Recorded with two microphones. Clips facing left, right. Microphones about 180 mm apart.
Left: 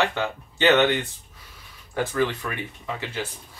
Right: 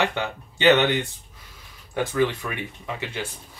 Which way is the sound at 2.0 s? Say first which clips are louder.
Right 1 dB; 15° right (ahead or behind).